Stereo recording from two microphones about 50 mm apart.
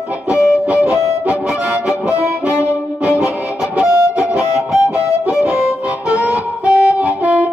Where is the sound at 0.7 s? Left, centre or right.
Right.